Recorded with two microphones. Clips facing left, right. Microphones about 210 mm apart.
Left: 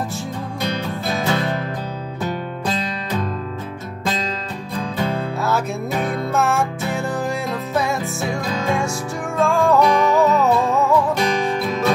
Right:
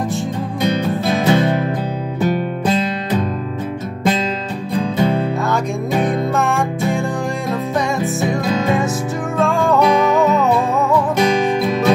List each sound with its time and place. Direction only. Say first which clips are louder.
1.2 s music: right 7 dB; 20° right (ahead or behind)
4.9 s music: right 5 dB; 20° right (ahead or behind)
6.3 s music: right 2 dB; centre (ahead or behind)
9.4 s music: even; centre (ahead or behind)
11.1 s music: right 5 dB; 20° right (ahead or behind)